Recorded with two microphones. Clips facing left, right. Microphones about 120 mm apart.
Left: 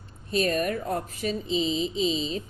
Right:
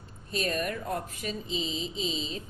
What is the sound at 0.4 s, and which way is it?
A woman's voice, 45° left (ahead or behind).